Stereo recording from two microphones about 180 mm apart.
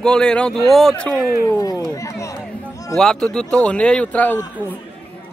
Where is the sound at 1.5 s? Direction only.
20° left (ahead or behind).